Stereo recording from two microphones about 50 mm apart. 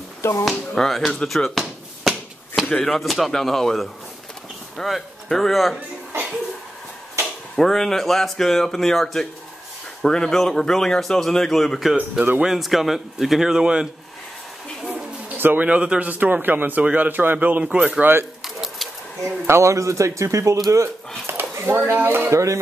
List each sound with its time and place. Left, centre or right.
0.2 s speech: left
0.5 s basketball bounce: centre
2.7 s speech: centre
7.5 s speech: centre
15.3 s a sound: right
15.6 s a man's voice: right
16.1 s speech: right
18.4 s pigeon: centre
19.2 s speech: right
21.3 s a sound: right
22.3 s speech: right